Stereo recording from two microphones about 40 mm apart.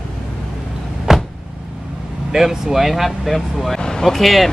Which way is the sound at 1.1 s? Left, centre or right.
Centre.